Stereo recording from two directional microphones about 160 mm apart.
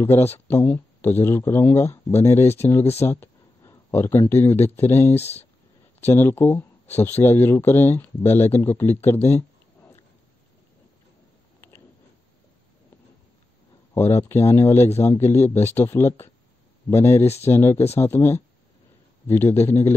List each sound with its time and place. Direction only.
0.0 s speech: 15° left (ahead or behind)
5.1 s speech: 40° left (ahead or behind)
5.9 s speech: 15° left (ahead or behind)
13.9 s speech: 15° left (ahead or behind)